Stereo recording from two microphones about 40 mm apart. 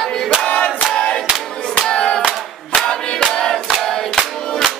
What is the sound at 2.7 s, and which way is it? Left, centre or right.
Choir, centre.